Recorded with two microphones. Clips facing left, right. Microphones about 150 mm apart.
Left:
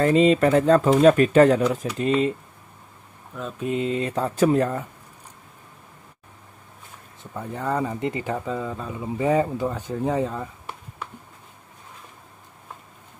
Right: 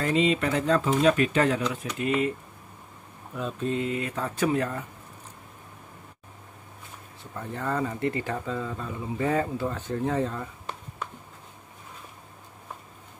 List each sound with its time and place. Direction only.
0.0 s speech: 45° left (ahead or behind)
2.0 s speech: 30° left (ahead or behind)
3.3 s mantra: centre (ahead or behind)
3.6 s speech: 20° left (ahead or behind); by 4.8 s 40° left (ahead or behind)
7.3 s speech: 10° left (ahead or behind)